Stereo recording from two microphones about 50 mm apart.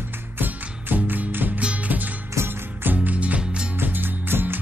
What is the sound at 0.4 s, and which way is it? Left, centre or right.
Music, right.